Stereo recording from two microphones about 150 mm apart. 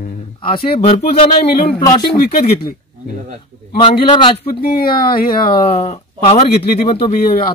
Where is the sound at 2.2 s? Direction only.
80° left.